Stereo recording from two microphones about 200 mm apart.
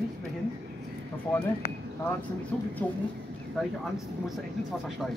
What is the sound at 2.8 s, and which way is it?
Speech, 5° left (ahead or behind).